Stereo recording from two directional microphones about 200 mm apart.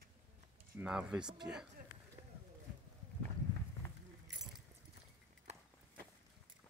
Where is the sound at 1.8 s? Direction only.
45° right (ahead or behind).